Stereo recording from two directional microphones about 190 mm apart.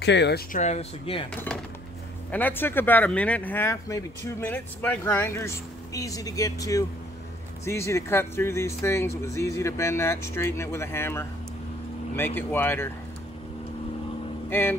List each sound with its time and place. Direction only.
0.0 s speech: 65° left (ahead or behind)
0.5 s speech: 40° left (ahead or behind)
1.3 s speech: 5° left (ahead or behind)
14.5 s speech: 10° left (ahead or behind)